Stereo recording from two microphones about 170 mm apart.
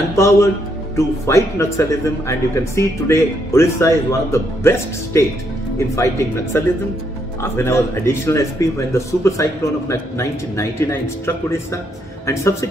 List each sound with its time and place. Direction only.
0.1 s speech: 15° left (ahead or behind)